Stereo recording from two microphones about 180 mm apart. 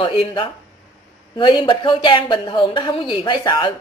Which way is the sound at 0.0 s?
30° left (ahead or behind).